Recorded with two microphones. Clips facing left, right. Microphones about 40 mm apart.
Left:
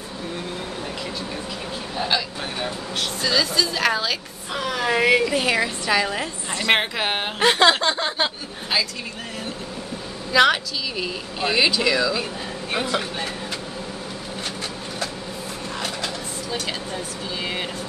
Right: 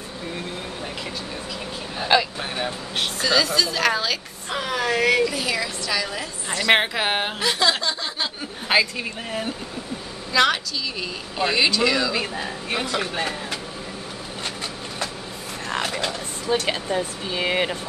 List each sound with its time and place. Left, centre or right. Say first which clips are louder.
2.0 s vehicle: right 7 dB; centre
3.2 s speech: right 1 dB; centre
4.8 s speech: left 2 dB; centre
5.3 s a woman's voice: left 4 dB; left
6.7 s speech: right 1 dB; centre
7.3 s speech: left 5 dB; left
10.3 s speech: left 2 dB; centre
13.0 s speech: right 3 dB; right
15.8 s a sound: even; right
16.6 s speech: right 5 dB; right